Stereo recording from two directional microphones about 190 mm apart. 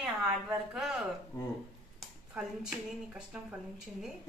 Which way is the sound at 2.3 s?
5° right (ahead or behind).